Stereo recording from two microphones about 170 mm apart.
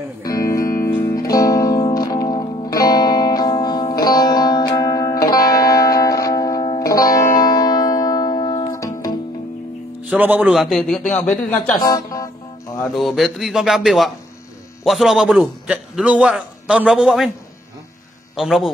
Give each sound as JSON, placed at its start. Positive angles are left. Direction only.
{"t": 0.2, "sound": "music", "side_deg": 20}
{"t": 10.0, "sound": "a man's voice", "side_deg": -10}
{"t": 11.8, "sound": "speech", "side_deg": 20}
{"t": 12.8, "sound": "a man's voice", "side_deg": 0}
{"t": 18.3, "sound": "a man's voice", "side_deg": 0}